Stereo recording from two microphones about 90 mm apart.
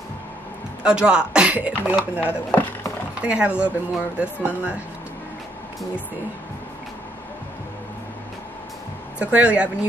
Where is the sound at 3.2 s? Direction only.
15° right (ahead or behind).